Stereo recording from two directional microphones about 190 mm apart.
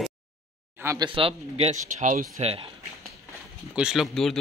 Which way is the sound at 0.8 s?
20° right (ahead or behind).